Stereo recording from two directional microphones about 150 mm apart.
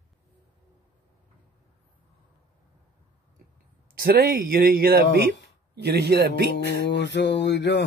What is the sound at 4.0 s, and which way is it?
Speech, 80° right.